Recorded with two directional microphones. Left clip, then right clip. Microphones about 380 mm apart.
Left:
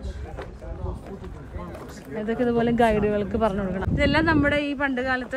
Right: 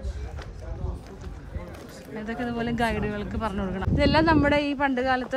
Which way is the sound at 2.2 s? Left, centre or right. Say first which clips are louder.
Left 7 dB; centre.